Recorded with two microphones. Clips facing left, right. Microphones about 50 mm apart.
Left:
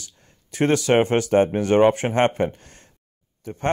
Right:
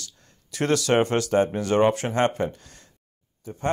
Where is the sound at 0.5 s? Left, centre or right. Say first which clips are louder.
Left 3 dB; left.